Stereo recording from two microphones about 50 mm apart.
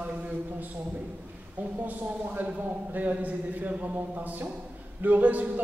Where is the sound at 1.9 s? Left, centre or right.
Right.